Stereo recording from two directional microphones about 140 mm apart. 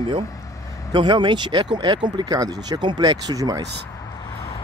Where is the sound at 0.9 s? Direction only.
35° right (ahead or behind).